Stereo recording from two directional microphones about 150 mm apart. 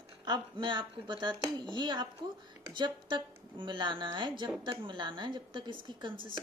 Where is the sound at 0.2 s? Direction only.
30° right (ahead or behind).